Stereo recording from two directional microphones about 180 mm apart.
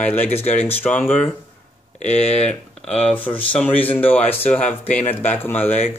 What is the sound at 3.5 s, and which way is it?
Speech, 10° left (ahead or behind).